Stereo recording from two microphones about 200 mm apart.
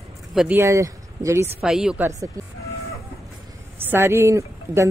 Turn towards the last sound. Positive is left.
turn(degrees=-15)  # may be behind; listen again after turning